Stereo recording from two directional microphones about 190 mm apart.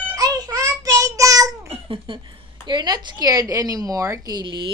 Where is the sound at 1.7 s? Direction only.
30° right (ahead or behind).